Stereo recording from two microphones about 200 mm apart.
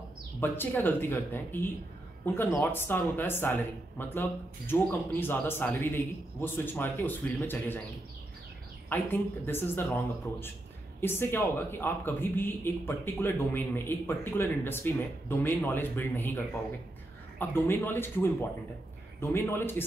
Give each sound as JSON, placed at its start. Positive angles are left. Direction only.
{"t": 0.4, "sound": "speech", "side_deg": 10}
{"t": 8.8, "sound": "speech", "side_deg": 10}
{"t": 17.4, "sound": "speech", "side_deg": 10}